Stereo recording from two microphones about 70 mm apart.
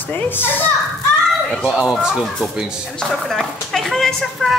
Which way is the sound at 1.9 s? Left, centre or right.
Centre.